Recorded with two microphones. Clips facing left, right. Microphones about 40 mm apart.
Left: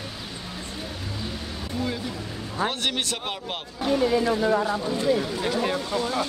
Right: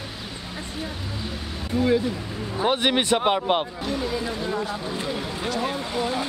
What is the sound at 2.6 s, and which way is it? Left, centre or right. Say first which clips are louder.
Speech: right 5 dB; centre.